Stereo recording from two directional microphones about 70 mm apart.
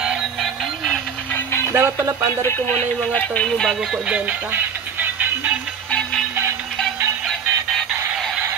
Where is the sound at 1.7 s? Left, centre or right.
Right.